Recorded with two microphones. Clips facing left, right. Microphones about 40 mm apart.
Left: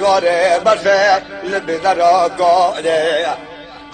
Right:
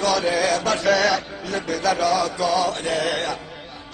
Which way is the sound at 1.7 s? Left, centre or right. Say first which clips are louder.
Left 8 dB; left.